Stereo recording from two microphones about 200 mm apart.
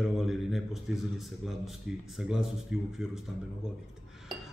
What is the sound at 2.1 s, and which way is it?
Speech, centre (ahead or behind).